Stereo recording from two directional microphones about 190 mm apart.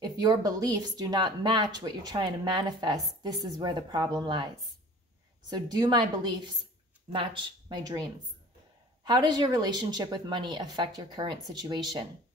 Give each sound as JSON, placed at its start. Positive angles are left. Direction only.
{"t": 0.0, "sound": "speech", "side_deg": -20}
{"t": 5.5, "sound": "speech", "side_deg": -20}
{"t": 9.0, "sound": "speech", "side_deg": -20}